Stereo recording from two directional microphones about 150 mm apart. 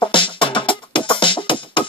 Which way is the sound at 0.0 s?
35° left (ahead or behind).